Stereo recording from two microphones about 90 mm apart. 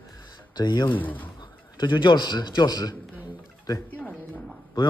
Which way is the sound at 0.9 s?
20° left (ahead or behind).